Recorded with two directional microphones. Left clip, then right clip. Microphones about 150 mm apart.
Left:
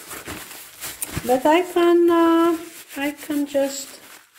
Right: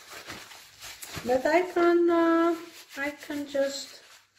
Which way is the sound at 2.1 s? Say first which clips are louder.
Left 6 dB; 40° left (ahead or behind).